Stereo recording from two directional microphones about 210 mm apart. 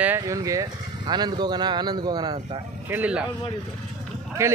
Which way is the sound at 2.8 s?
10° right (ahead or behind).